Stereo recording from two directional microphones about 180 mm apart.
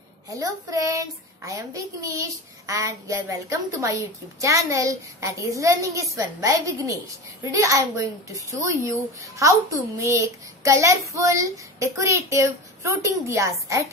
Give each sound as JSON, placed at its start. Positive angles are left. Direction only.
{"t": 0.3, "sound": "a child's voice", "side_deg": -20}